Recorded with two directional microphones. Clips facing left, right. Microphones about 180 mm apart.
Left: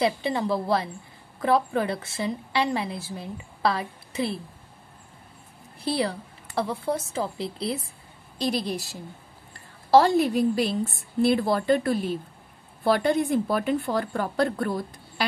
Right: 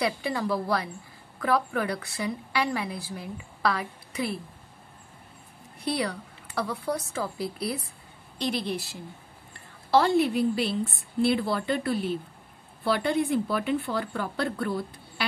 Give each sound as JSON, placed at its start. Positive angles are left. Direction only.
{"t": 0.0, "sound": "a woman's voice", "side_deg": 25}
{"t": 5.8, "sound": "a woman's voice", "side_deg": 30}
{"t": 8.4, "sound": "a woman's voice", "side_deg": 40}
{"t": 9.8, "sound": "a woman's voice", "side_deg": 40}